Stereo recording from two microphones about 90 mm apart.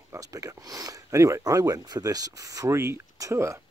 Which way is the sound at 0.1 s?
35° right (ahead or behind).